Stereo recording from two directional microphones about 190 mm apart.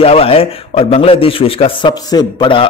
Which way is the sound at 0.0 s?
30° left (ahead or behind).